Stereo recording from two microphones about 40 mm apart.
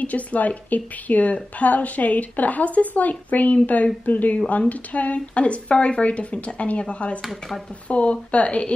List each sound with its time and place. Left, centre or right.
0.0 s a woman's voice: left
7.2 s speech: centre
7.9 s a woman's voice: left